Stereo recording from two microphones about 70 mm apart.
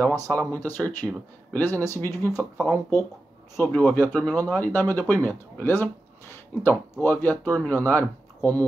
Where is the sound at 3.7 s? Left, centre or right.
Left.